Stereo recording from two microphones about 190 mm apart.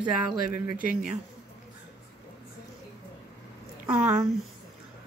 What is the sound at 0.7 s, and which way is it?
Speech, 45° right (ahead or behind).